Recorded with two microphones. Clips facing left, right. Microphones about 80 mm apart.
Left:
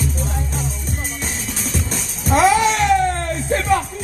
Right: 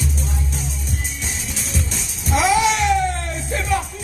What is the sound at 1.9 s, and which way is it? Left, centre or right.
Music, left.